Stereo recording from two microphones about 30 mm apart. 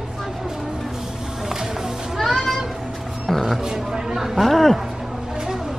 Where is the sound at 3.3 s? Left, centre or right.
Centre.